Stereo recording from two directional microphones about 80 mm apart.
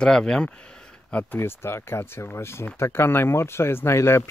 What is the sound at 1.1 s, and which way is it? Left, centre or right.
Speech, left.